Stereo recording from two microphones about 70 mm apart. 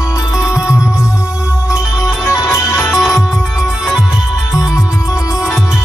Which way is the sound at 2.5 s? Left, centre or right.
Left.